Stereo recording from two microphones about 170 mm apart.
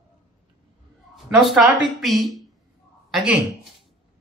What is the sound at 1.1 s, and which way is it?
Speech, centre (ahead or behind).